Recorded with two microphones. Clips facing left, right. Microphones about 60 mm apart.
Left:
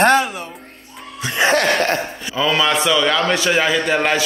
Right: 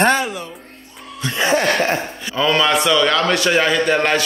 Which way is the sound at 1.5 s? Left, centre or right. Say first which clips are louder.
Right 1 dB; left.